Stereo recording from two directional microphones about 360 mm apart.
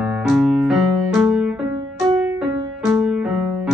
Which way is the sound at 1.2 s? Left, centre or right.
Centre.